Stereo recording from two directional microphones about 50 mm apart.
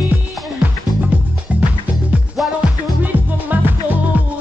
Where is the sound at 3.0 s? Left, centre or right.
Right.